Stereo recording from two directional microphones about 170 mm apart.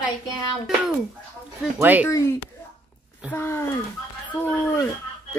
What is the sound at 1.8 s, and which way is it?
Speech, 10° right (ahead or behind).